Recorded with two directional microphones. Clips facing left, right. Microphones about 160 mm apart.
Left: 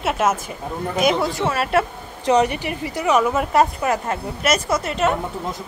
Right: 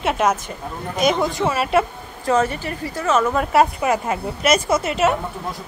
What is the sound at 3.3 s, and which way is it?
A woman's voice, 5° right (ahead or behind).